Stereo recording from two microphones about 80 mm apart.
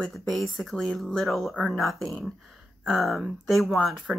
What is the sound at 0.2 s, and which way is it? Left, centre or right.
Speech, centre.